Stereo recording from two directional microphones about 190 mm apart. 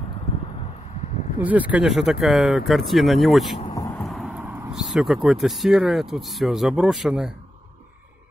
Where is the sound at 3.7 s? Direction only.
20° left (ahead or behind).